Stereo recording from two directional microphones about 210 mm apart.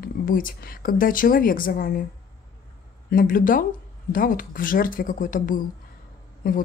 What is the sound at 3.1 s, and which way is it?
Speech, 40° left (ahead or behind).